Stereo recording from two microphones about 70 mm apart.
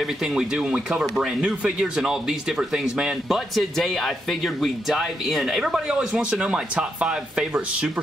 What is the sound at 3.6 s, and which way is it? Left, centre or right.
Speech, centre.